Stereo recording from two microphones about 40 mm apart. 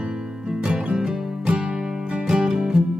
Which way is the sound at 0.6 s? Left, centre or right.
Right.